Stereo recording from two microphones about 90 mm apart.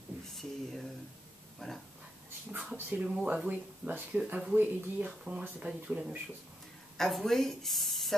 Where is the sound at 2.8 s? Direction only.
20° right (ahead or behind).